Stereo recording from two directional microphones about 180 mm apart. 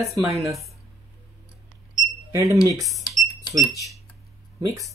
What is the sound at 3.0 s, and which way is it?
Cash register, 20° left (ahead or behind).